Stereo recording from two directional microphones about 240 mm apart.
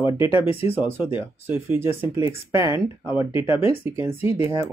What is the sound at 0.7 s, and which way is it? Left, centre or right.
Speech, centre.